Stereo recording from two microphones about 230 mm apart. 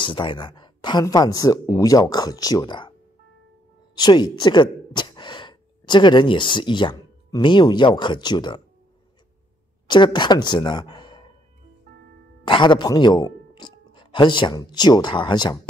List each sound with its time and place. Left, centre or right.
0.0 s speech: left
3.9 s speech: centre
9.8 s speech: centre
12.4 s speech: centre